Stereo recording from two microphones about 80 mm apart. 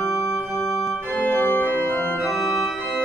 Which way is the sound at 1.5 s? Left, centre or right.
Left.